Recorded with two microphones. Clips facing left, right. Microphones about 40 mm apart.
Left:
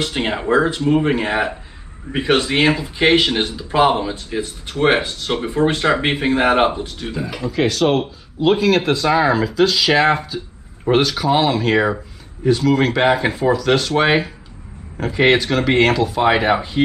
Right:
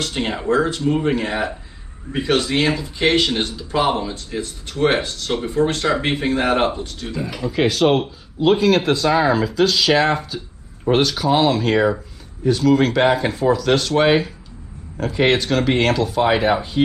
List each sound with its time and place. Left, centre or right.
0.0 s speech: left
7.2 s speech: centre